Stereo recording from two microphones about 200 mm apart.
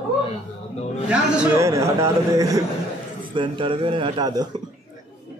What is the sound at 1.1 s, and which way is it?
A man's voice, 10° right (ahead or behind).